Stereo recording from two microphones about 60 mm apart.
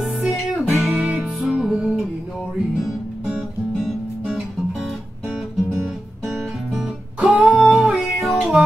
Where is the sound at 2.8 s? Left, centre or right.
Centre.